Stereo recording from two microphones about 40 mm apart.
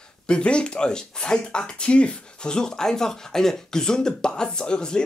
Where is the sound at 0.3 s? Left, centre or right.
Left.